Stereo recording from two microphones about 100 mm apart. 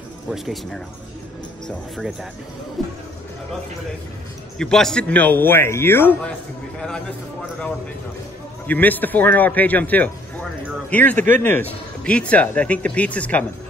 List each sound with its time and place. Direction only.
0.3 s speech: 5° left (ahead or behind)
2.8 s music: centre (ahead or behind)
4.6 s a man's voice: 5° left (ahead or behind); by 6.3 s 20° left (ahead or behind)
8.6 s a man's voice: 15° left (ahead or behind)